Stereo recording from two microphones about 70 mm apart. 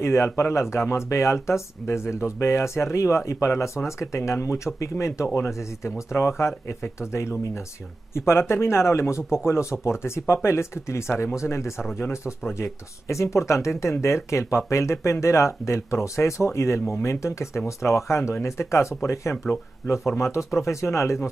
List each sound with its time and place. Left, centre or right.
0.0 s speech: left